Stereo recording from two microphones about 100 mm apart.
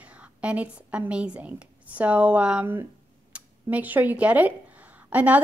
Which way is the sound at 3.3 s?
15° right (ahead or behind).